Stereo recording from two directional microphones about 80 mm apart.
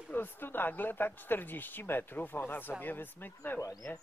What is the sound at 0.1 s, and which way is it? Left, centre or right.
Speech, left.